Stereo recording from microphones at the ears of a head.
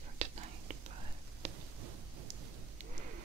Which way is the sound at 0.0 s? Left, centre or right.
Right.